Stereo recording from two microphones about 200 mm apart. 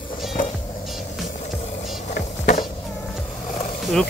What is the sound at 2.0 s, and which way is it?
Skateboard, 35° left (ahead or behind).